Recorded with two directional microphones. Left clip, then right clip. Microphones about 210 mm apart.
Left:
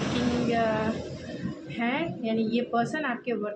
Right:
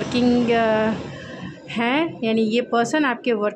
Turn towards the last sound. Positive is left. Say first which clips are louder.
# right 9 dB
turn(degrees=-50)  # may be behind; listen again after turning